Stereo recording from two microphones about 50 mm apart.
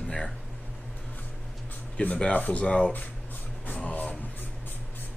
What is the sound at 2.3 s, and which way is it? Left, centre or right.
Speech, left.